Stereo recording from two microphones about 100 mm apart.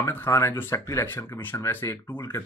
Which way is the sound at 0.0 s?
25° left (ahead or behind).